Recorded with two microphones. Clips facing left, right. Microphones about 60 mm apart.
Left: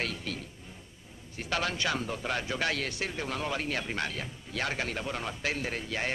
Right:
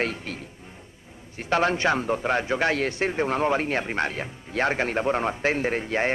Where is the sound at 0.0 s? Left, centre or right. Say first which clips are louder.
Right 6 dB; right.